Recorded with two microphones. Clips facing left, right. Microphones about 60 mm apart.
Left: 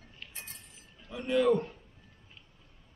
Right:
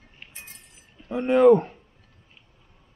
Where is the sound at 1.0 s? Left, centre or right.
Right.